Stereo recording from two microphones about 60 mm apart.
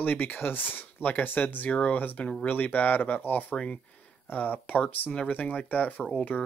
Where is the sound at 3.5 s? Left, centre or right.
Centre.